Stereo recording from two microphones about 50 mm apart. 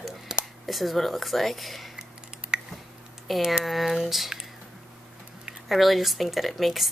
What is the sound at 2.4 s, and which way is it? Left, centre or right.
Squish, right.